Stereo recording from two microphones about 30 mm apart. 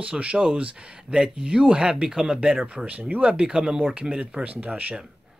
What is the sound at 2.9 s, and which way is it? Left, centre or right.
Speech, right.